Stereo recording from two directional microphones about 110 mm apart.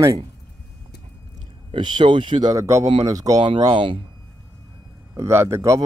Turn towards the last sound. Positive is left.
turn(degrees=-25)  # may be behind; listen again after turning